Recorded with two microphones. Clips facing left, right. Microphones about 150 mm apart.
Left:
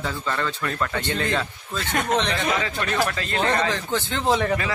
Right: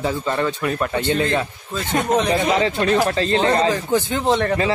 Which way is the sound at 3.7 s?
10° right (ahead or behind).